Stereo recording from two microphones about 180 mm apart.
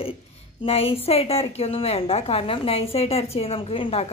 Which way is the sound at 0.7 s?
35° left (ahead or behind).